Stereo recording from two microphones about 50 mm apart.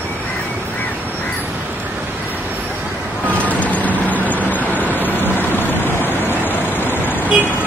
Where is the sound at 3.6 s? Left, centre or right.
Left.